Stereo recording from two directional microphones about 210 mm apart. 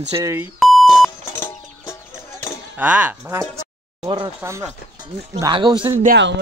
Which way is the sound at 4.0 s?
25° right (ahead or behind).